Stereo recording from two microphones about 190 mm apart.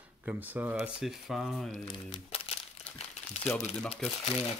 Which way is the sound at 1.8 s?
30° left (ahead or behind).